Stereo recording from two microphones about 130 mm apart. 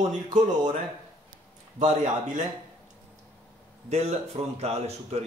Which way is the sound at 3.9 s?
55° right (ahead or behind).